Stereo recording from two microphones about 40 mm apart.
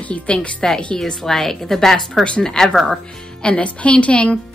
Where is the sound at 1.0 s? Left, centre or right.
Centre.